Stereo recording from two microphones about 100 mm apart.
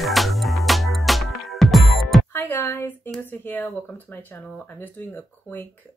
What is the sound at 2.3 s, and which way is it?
Speech, 25° left (ahead or behind).